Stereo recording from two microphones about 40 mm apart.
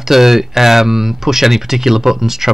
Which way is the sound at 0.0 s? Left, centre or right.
Centre.